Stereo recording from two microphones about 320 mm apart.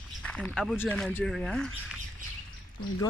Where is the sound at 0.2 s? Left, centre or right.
Centre.